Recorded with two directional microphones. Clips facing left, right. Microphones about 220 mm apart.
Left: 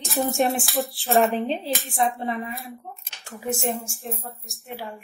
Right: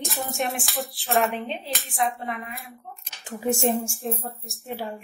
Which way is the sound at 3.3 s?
30° right (ahead or behind).